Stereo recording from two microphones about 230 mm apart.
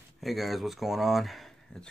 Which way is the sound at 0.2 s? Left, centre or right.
Centre.